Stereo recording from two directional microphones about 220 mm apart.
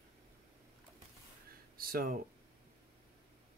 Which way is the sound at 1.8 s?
40° right (ahead or behind).